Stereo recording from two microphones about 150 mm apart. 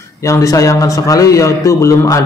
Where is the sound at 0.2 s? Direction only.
20° left (ahead or behind).